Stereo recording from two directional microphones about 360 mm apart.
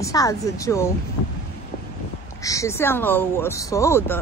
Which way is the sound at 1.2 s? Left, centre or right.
Left.